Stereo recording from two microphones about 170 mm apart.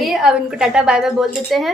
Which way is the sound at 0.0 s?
Centre (ahead or behind).